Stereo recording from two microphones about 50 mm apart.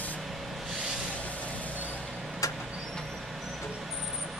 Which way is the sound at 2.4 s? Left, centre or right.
Left.